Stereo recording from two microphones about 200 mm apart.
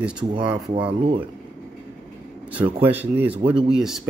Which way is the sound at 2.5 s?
10° right (ahead or behind).